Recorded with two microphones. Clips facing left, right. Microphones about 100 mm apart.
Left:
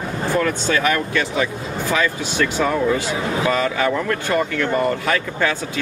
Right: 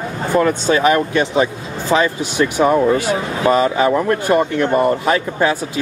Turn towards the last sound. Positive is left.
turn(degrees=-20)  # may be behind; listen again after turning